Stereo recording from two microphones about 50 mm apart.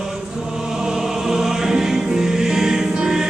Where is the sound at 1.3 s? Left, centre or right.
Centre.